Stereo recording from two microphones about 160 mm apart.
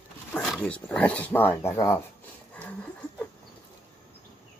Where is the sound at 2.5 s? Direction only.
10° left (ahead or behind).